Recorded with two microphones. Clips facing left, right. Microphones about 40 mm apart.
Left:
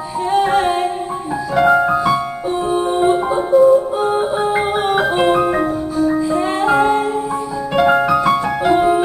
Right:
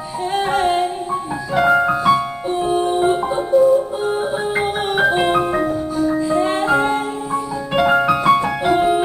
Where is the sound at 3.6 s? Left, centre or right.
Left.